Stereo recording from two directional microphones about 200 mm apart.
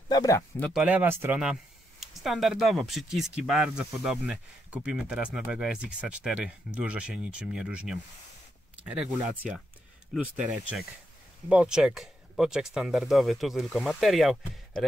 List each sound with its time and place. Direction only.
0.1 s speech: 20° left (ahead or behind)
0.6 s speech: 5° left (ahead or behind)
0.8 s speech: 10° right (ahead or behind)